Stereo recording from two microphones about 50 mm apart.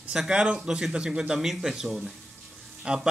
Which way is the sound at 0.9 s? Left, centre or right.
Centre.